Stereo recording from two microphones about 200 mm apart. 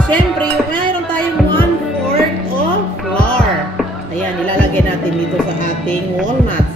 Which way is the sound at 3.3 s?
5° left (ahead or behind).